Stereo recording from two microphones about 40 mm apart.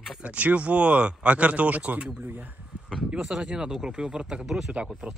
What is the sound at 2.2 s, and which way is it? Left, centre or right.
Speech, right.